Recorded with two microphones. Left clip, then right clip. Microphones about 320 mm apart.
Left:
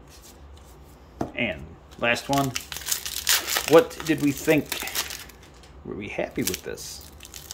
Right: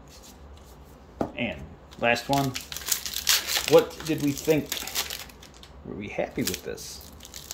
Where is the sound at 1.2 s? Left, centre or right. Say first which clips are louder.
Left 2 dB; centre.